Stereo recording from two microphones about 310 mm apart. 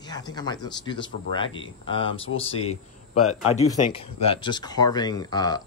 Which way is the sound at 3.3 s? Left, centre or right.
Left.